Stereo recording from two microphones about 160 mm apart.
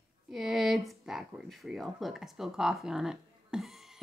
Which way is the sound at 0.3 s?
Centre (ahead or behind).